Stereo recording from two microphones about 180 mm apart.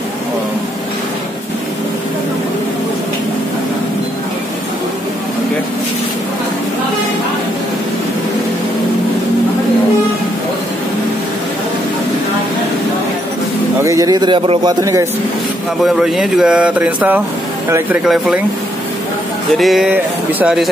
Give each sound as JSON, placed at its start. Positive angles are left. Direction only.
{"t": 13.8, "sound": "a man's voice", "side_deg": -20}
{"t": 15.8, "sound": "speech", "side_deg": 0}
{"t": 18.0, "sound": "speech", "side_deg": 0}
{"t": 19.5, "sound": "speech", "side_deg": 0}